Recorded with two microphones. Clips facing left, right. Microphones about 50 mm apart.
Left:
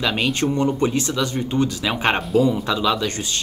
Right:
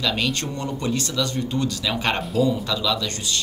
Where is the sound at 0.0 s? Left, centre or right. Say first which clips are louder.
Left 3 dB; left.